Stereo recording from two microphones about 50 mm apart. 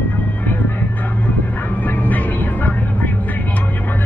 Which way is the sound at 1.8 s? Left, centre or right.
Left.